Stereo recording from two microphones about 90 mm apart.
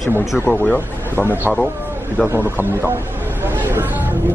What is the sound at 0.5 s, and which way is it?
Speech, 20° left (ahead or behind).